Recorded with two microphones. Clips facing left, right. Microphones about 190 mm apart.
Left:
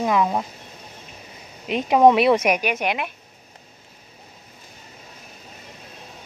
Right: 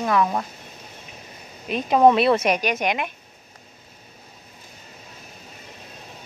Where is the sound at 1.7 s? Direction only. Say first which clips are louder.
Left 1 dB; 15° left (ahead or behind).